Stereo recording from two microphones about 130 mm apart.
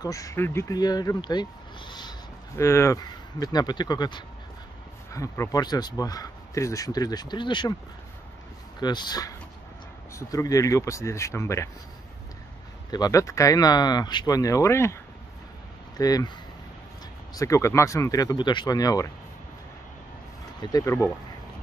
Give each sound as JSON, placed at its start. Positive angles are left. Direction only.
{"t": 0.0, "sound": "speech", "side_deg": 25}
{"t": 2.5, "sound": "speech", "side_deg": 20}
{"t": 8.8, "sound": "speech", "side_deg": 35}
{"t": 12.9, "sound": "speech", "side_deg": 25}
{"t": 16.0, "sound": "speech", "side_deg": 30}
{"t": 20.6, "sound": "speech", "side_deg": 25}